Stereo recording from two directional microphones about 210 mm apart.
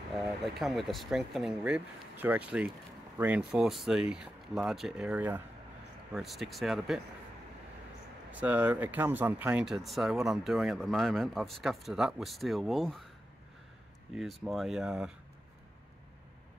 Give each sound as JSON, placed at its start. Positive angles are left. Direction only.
{"t": 0.6, "sound": "speech", "side_deg": 0}
{"t": 8.3, "sound": "speech", "side_deg": -5}
{"t": 14.1, "sound": "speech", "side_deg": 0}